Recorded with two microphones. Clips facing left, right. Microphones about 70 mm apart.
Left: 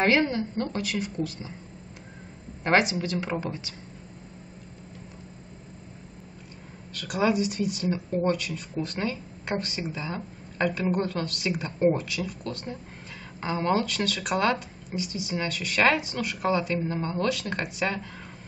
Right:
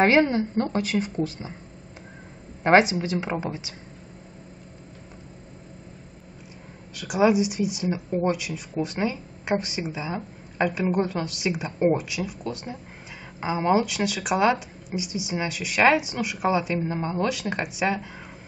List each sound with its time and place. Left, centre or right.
0.0 s a woman's voice: right
2.6 s a woman's voice: right
6.9 s speech: centre